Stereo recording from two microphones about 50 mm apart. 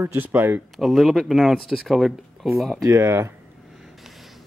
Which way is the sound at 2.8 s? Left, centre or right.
Right.